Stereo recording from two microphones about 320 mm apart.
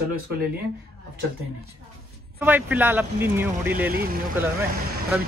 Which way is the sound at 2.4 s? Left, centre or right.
Centre.